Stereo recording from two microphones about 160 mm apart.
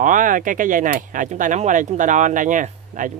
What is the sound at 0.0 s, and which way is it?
Speech, 55° right (ahead or behind).